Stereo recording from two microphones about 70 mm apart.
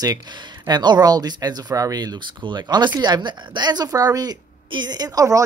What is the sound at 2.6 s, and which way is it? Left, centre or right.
Speech, right.